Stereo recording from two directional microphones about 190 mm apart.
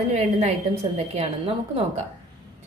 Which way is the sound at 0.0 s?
35° right (ahead or behind).